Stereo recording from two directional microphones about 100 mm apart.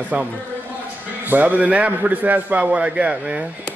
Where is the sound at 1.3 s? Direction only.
15° right (ahead or behind).